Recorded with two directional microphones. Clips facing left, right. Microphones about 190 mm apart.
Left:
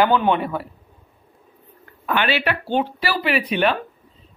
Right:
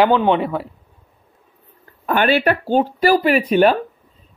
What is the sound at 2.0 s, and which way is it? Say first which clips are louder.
Speech: right 5 dB; 45° right (ahead or behind).